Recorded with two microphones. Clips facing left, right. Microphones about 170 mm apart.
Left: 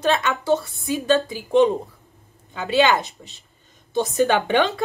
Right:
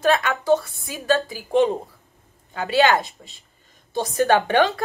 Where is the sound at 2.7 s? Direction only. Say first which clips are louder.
Even; 20° left (ahead or behind).